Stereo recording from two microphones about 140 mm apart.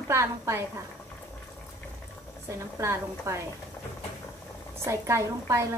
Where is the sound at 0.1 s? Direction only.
20° right (ahead or behind).